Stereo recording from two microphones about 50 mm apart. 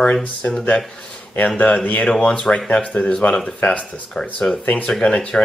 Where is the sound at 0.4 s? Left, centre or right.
Left.